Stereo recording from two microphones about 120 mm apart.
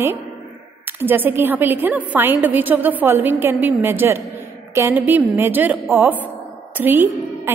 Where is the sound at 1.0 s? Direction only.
15° right (ahead or behind).